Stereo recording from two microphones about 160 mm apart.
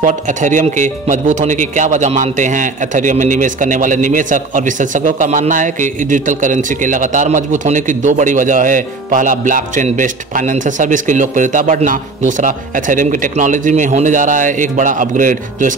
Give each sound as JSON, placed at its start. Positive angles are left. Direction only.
{"t": 0.0, "sound": "speech", "side_deg": -50}